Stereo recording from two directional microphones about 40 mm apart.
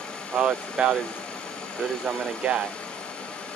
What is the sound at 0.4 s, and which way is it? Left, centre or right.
Speech, right.